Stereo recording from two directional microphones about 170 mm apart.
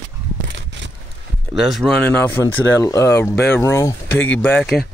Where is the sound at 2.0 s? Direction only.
10° left (ahead or behind).